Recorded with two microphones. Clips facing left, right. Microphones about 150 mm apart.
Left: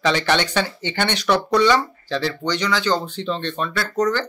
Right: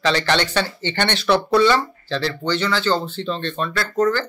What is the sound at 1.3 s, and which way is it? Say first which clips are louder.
Speech: right 2 dB; 10° right (ahead or behind).